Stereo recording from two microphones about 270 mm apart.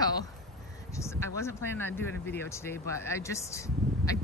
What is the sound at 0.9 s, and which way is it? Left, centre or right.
Speech, centre.